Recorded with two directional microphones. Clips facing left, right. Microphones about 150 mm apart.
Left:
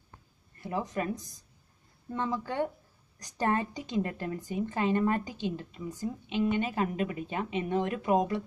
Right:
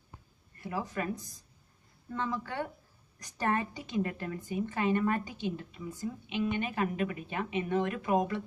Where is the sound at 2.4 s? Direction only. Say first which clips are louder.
Left 5 dB; 25° left (ahead or behind).